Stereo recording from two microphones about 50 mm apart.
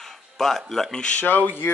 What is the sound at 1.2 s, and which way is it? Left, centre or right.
Speech, left.